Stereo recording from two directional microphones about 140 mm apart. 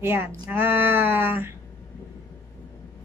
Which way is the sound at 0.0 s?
15° right (ahead or behind).